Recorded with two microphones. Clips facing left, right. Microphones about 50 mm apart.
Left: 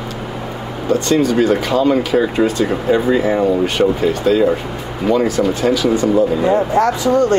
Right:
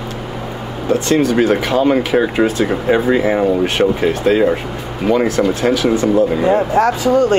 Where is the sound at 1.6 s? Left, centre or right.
Right.